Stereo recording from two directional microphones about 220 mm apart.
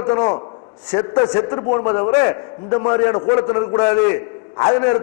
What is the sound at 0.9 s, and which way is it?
A man's voice, 20° left (ahead or behind).